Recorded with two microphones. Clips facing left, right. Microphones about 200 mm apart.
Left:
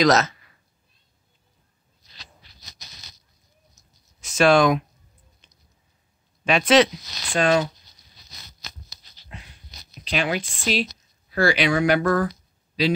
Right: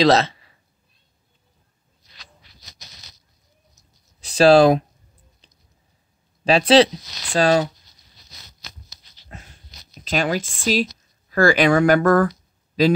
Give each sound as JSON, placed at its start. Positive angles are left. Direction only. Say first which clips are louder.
{"t": 0.0, "sound": "cat", "louder": "right 2 dB", "side_deg": -30}
{"t": 4.2, "sound": "speech", "louder": "right 5 dB", "side_deg": -35}
{"t": 5.4, "sound": "chewing", "louder": "right 3 dB", "side_deg": -35}
{"t": 6.4, "sound": "speech", "louder": "right 3 dB", "side_deg": -35}
{"t": 9.3, "sound": "a sound", "louder": "right 1 dB", "side_deg": -45}